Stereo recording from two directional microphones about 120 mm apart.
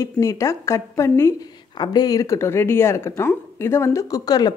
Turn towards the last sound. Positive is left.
turn(degrees=30)  # may be behind; listen again after turning